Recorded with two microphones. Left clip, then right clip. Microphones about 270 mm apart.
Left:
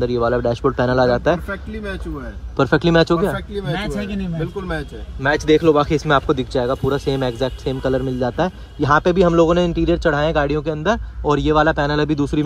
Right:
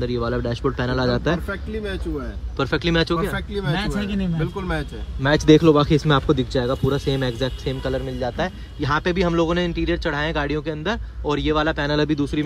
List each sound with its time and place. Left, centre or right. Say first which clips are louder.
0.0 s speech: left 6 dB; centre
2.5 s speech: left 6 dB; centre
5.2 s speech: even; centre
7.8 s speech: left 6 dB; left
8.8 s speech: left 7 dB; centre